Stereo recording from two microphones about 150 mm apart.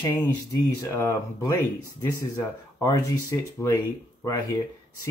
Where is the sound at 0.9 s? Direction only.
15° left (ahead or behind).